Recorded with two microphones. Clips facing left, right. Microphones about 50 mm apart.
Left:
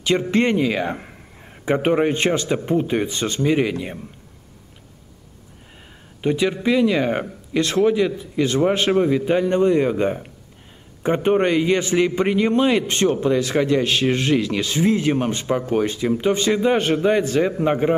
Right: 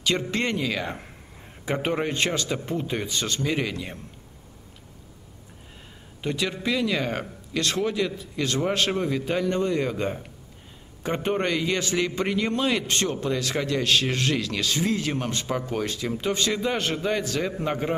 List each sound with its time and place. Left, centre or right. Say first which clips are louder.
0.0 s a man's voice: left 7 dB; left
6.2 s a man's voice: left 8 dB; centre
11.2 s a man's voice: left 8 dB; left